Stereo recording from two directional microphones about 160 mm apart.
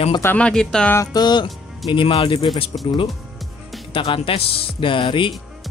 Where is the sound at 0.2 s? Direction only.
10° left (ahead or behind).